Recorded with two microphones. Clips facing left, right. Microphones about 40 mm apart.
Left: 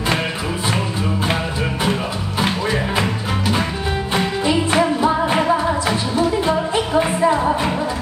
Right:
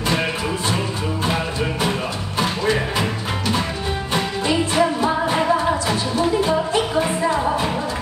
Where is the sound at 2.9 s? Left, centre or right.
Centre.